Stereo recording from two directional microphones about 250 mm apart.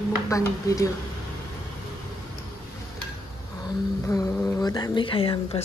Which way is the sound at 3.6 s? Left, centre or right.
Centre.